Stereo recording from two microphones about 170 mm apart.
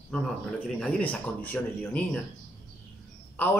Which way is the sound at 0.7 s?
10° left (ahead or behind).